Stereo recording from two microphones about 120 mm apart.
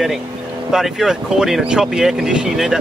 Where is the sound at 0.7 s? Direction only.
5° right (ahead or behind).